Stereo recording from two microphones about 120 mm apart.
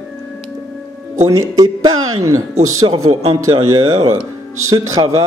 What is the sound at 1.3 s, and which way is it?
Speech, 30° right (ahead or behind).